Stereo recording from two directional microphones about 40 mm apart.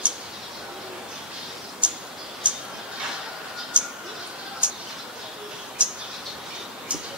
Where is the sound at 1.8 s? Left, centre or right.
Right.